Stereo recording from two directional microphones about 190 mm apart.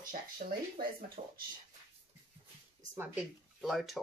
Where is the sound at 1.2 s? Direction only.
40° right (ahead or behind).